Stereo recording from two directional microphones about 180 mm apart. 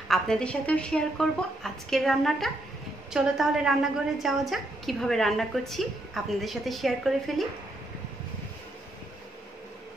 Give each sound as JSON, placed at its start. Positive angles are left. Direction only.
{"t": 0.1, "sound": "a woman's voice", "side_deg": 5}